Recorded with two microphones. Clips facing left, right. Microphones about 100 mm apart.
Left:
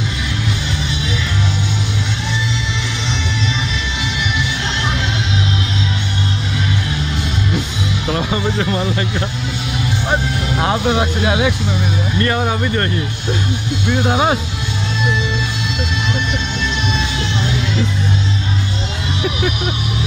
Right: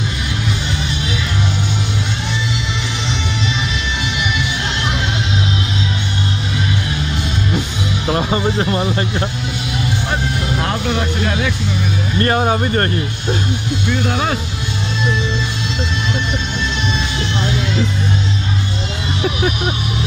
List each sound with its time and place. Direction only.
8.1 s speech: 25° right (ahead or behind)
10.6 s speech: 15° left (ahead or behind)
12.2 s speech: 40° right (ahead or behind)
14.0 s speech: 20° left (ahead or behind)